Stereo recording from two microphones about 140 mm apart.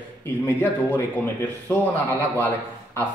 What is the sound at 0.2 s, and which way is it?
Speech, 15° left (ahead or behind).